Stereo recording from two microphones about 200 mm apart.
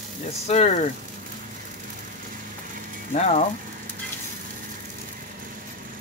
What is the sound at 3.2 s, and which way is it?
Speech, 30° left (ahead or behind).